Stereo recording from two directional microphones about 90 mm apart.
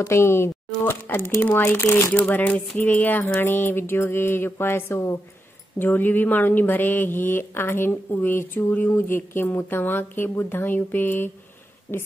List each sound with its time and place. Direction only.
0.0 s a woman's voice: 30° left (ahead or behind)